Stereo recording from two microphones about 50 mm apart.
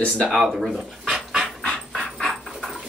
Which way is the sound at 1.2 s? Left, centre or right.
Centre.